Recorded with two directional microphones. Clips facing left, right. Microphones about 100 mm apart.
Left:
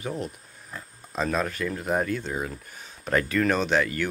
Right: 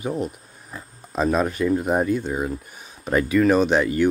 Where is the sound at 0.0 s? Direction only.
15° right (ahead or behind).